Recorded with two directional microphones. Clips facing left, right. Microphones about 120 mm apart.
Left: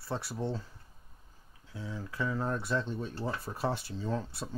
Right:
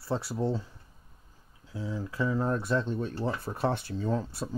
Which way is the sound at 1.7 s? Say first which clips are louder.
Right 5 dB; 35° right (ahead or behind).